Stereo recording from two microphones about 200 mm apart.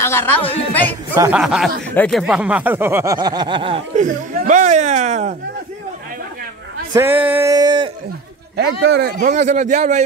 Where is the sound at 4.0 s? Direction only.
40° right (ahead or behind).